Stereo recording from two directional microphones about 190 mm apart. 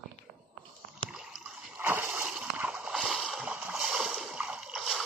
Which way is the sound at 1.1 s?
5° right (ahead or behind).